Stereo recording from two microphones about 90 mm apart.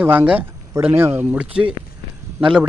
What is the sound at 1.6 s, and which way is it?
Speech, 10° right (ahead or behind).